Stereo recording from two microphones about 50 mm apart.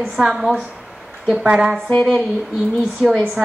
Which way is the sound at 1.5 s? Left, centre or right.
Centre.